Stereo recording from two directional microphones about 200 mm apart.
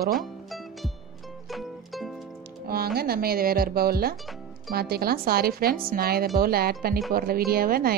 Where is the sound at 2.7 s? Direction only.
50° right (ahead or behind).